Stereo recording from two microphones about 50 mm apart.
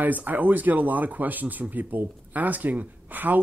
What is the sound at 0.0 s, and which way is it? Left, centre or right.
Speech, right.